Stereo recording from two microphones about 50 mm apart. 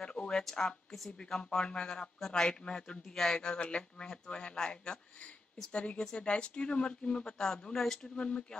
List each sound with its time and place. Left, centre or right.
0.0 s a sound: centre
1.1 s speech: centre
8.2 s speech: centre